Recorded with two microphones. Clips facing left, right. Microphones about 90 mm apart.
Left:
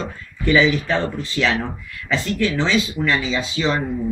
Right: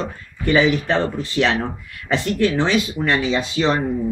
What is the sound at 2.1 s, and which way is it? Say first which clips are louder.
Speech: right 2 dB; 55° right (ahead or behind).